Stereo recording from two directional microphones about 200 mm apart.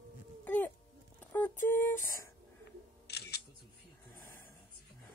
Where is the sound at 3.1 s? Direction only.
55° left (ahead or behind).